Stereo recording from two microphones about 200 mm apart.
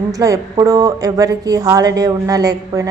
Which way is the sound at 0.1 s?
15° right (ahead or behind).